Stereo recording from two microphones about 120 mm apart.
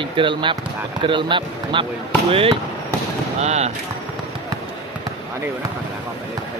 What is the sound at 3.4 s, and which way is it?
Speech, 65° right (ahead or behind).